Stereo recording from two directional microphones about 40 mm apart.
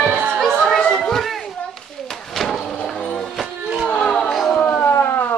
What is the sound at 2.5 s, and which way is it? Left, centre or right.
Music, centre.